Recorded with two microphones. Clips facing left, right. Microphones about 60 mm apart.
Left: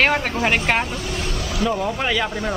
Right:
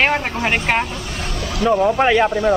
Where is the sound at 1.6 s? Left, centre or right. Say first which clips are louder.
Right 9 dB; right.